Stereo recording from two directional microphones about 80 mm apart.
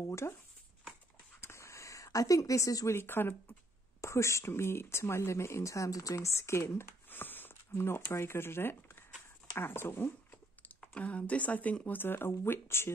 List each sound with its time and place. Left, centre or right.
0.0 s speech: left
1.4 s a sound: left
2.9 s speech: left
11.0 s speech: centre; by 12.9 s left